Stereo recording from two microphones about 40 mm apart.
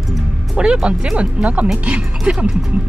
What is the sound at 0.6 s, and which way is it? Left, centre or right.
Speech, right.